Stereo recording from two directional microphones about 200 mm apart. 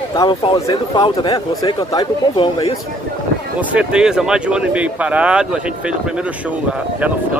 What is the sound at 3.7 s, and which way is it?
Speech, 5° right (ahead or behind).